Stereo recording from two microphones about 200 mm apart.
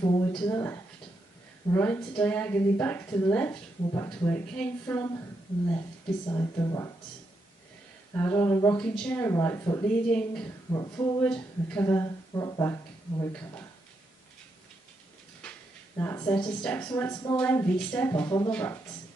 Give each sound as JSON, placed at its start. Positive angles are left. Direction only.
{"t": 0.0, "sound": "a sound", "side_deg": 25}
{"t": 0.5, "sound": "a woman's voice", "side_deg": 15}
{"t": 6.2, "sound": "a woman's voice", "side_deg": 20}
{"t": 8.1, "sound": "a woman's voice", "side_deg": 10}
{"t": 10.7, "sound": "a woman's voice", "side_deg": 15}
{"t": 11.2, "sound": "speech", "side_deg": 5}
{"t": 16.0, "sound": "a woman's voice", "side_deg": 10}